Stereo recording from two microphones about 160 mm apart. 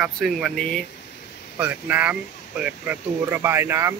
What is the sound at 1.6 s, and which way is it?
Speech, 10° right (ahead or behind).